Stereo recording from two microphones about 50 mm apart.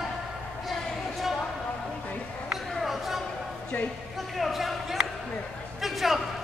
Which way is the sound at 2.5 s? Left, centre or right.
Centre.